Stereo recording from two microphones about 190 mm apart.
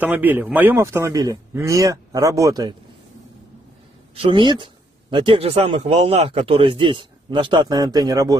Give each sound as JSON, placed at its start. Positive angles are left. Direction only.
{"t": 0.0, "sound": "a man's voice", "side_deg": -10}
{"t": 4.1, "sound": "a man's voice", "side_deg": -25}